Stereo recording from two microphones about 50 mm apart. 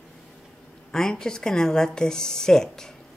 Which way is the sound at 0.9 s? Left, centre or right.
Centre.